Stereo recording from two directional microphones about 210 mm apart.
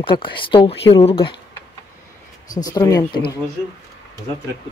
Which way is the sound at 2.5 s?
15° left (ahead or behind).